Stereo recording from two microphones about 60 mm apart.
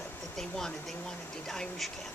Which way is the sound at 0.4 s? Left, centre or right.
Centre.